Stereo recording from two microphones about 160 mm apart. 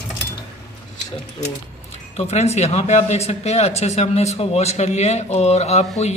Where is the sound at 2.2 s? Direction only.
40° left (ahead or behind).